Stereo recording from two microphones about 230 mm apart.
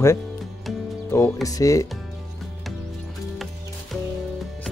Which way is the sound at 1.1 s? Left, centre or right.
Centre.